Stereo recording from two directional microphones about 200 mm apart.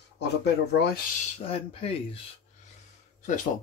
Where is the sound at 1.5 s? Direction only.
30° left (ahead or behind).